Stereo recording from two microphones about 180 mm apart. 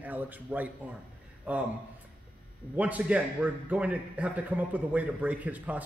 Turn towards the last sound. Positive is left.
turn(degrees=-10)  # may be behind; listen again after turning